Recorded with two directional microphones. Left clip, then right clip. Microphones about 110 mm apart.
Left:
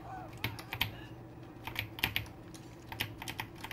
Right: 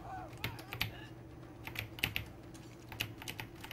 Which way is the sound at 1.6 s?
15° right (ahead or behind).